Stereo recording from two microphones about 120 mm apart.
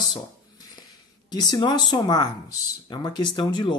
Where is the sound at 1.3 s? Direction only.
35° left (ahead or behind).